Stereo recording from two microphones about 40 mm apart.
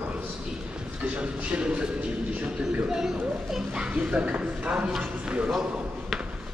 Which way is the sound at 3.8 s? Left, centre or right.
Right.